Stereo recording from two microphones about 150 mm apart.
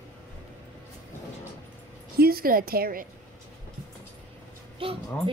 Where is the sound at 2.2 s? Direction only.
85° right.